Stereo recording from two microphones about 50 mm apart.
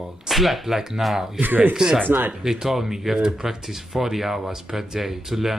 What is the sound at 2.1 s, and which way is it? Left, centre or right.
Speech, right.